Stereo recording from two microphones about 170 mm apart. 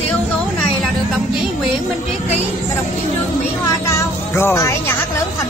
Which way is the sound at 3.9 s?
15° left (ahead or behind).